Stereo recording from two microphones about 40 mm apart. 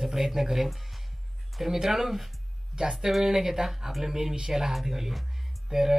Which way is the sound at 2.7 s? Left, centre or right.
Centre.